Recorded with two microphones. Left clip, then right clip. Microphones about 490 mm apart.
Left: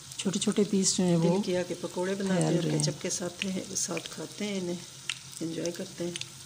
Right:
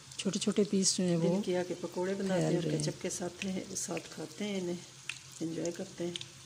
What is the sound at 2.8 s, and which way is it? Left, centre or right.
Speech, right.